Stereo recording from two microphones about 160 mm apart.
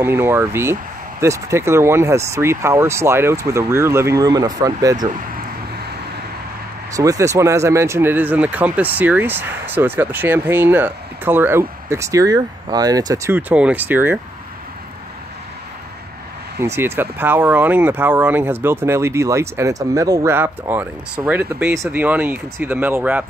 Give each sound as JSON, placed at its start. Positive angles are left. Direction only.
{"t": 0.0, "sound": "speech", "side_deg": -15}
{"t": 6.9, "sound": "speech", "side_deg": -20}
{"t": 16.5, "sound": "speech", "side_deg": -15}